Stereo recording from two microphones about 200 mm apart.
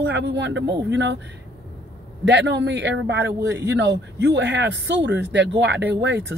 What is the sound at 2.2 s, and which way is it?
Speech, 60° right (ahead or behind).